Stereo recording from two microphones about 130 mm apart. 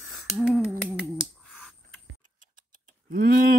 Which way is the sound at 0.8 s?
10° left (ahead or behind).